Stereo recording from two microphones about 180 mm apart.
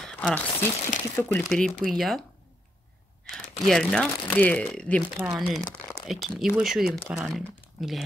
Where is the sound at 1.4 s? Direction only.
Centre (ahead or behind).